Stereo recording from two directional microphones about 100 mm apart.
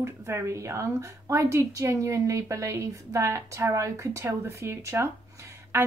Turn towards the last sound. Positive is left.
turn(degrees=-25)  # may be behind; listen again after turning